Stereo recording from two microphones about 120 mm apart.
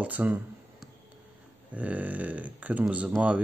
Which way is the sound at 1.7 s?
10° right (ahead or behind).